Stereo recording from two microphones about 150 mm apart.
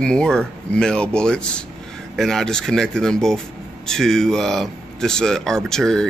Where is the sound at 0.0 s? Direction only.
5° left (ahead or behind).